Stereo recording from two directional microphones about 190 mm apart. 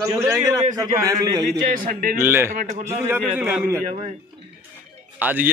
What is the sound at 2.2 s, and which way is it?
Speech, 10° right (ahead or behind).